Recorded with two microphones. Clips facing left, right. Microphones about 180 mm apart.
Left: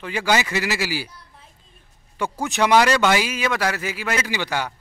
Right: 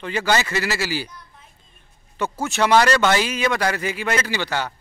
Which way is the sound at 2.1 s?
15° left (ahead or behind).